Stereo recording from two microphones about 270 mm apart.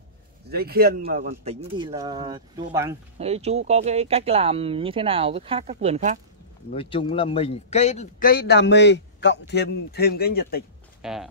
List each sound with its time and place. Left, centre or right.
0.5 s speech: right; by 3.0 s centre
3.2 s speech: right
6.7 s a man's voice: centre; by 10.6 s left
11.0 s speech: centre